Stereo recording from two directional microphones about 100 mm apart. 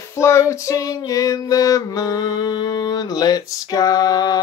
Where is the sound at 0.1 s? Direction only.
30° left (ahead or behind).